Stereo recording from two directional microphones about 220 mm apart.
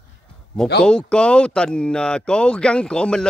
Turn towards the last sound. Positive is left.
turn(degrees=5)  # may be behind; listen again after turning